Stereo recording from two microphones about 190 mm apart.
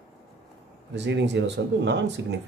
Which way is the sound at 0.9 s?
65° right (ahead or behind).